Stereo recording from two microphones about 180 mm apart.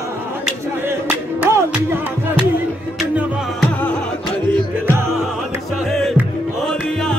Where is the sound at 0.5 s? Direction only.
10° right (ahead or behind).